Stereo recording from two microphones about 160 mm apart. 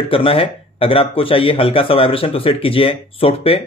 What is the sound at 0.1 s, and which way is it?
Speech, 35° left (ahead or behind).